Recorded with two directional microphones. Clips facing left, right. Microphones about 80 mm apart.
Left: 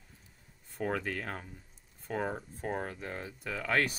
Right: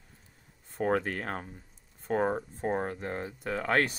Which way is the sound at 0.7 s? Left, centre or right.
Right.